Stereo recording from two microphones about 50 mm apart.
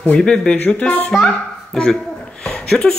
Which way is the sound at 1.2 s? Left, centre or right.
Centre.